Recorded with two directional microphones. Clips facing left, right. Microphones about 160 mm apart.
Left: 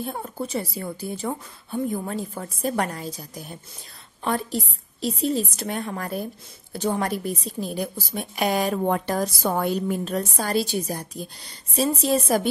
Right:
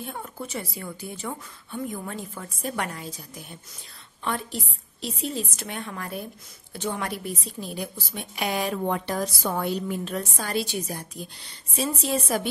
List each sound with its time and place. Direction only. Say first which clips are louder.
0.0 s a woman's voice: left 5 dB; 35° left (ahead or behind)